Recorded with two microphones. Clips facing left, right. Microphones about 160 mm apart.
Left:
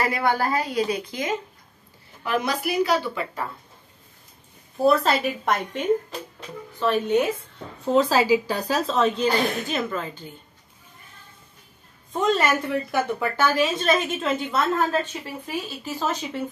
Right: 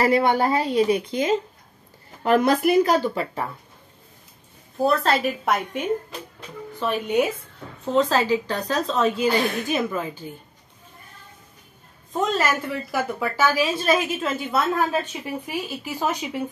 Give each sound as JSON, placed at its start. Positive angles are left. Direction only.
{"t": 0.0, "sound": "a woman's voice", "side_deg": -25}
{"t": 2.2, "sound": "speech", "side_deg": -50}
{"t": 4.7, "sound": "a woman's voice", "side_deg": 0}
{"t": 6.8, "sound": "speech", "side_deg": -10}
{"t": 7.8, "sound": "a woman's voice", "side_deg": 5}
{"t": 12.1, "sound": "a woman's voice", "side_deg": 0}